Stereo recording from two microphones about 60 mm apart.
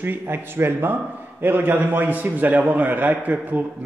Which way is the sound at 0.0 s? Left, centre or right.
Right.